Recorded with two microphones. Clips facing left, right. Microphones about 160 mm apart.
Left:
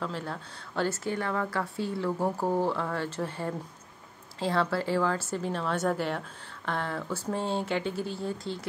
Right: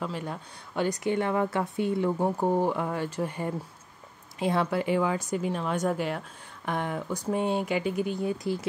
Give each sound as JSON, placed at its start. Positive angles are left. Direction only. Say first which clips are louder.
{"t": 0.0, "sound": "speech", "louder": "right 1 dB", "side_deg": -10}
{"t": 8.5, "sound": "speech", "louder": "right 6 dB", "side_deg": 25}